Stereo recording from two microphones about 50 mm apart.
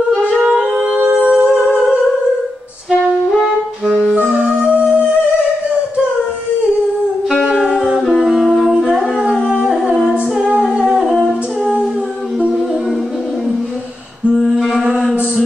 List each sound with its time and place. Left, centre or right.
0.6 s music: centre
1.2 s humming: right
1.6 s music: right
3.3 s music: centre
4.2 s music: right
7.6 s music: centre
8.2 s music: centre
10.7 s music: centre
14.3 s music: centre
14.6 s mantra: centre